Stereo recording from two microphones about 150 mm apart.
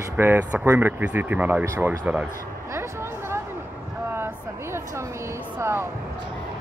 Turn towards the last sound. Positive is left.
turn(degrees=-15)  # may be behind; listen again after turning